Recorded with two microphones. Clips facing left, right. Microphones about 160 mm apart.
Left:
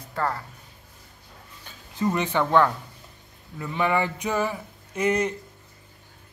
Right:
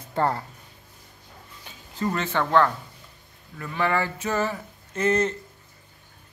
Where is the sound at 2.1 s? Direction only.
15° left (ahead or behind).